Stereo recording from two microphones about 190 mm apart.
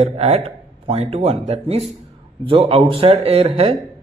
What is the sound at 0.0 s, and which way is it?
A man's voice, 35° right (ahead or behind).